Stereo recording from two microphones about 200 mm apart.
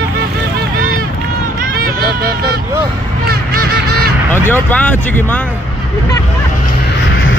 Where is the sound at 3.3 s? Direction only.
50° right (ahead or behind).